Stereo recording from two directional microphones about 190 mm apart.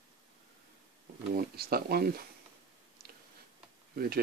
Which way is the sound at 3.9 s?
50° right (ahead or behind).